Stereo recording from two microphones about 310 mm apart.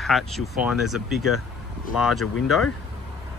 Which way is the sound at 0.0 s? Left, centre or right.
Centre.